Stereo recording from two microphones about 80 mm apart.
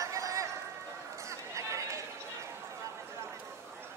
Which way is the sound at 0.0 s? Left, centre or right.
Right.